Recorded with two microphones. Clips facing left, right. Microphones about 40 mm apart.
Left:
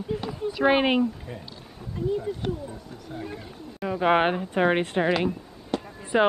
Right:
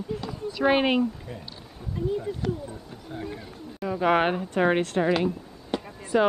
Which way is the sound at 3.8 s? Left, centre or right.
Centre.